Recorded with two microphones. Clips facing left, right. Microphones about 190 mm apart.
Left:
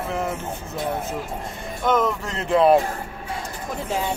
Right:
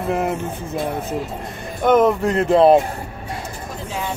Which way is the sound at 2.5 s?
30° right (ahead or behind).